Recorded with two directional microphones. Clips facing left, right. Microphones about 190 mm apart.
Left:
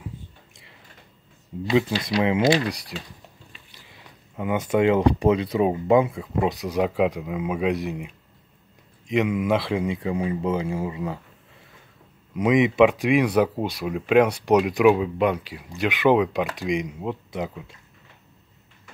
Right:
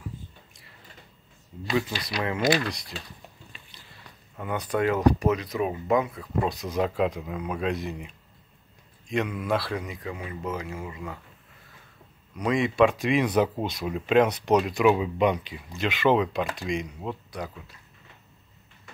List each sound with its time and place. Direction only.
1.6 s speech: 20° left (ahead or behind)
12.4 s speech: 20° left (ahead or behind)
15.0 s speech: 5° left (ahead or behind); by 17.7 s 20° left (ahead or behind)